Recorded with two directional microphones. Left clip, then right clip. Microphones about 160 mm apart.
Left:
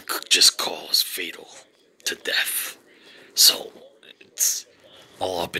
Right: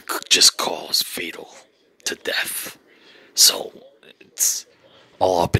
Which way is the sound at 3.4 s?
60° right (ahead or behind).